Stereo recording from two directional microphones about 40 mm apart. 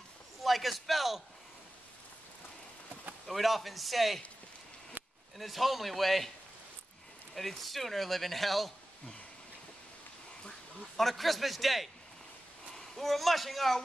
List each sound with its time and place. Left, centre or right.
0.4 s a man's voice: centre
3.3 s speech: centre
5.0 s a sound: right
5.4 s speech: centre
7.3 s speech: centre
11.0 s speech: centre